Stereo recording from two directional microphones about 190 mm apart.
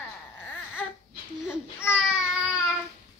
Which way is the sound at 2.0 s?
5° right (ahead or behind).